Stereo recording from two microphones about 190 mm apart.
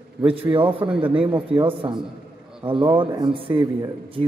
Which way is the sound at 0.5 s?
25° right (ahead or behind).